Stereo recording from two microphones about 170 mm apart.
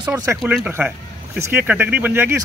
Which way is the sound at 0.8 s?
10° right (ahead or behind).